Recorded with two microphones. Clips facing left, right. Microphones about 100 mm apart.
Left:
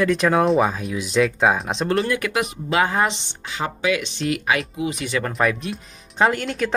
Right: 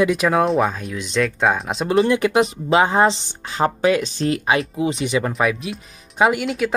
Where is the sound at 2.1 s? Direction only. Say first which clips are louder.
Right 6 dB; 25° right (ahead or behind).